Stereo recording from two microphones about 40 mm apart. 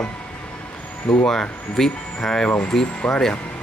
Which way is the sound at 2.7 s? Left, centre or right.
Centre.